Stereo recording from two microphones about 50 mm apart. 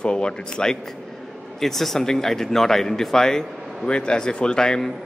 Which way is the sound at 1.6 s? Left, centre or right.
Centre.